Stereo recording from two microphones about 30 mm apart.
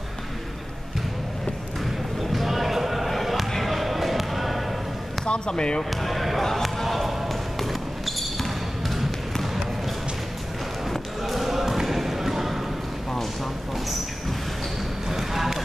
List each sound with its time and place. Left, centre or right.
2.3 s basketball bounce: centre
5.2 s speech: left
6.0 s basketball bounce: centre
10.9 s basketball bounce: centre
15.0 s basketball bounce: centre